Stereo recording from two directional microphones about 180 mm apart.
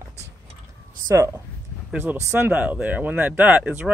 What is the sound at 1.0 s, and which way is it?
Speech, 15° right (ahead or behind).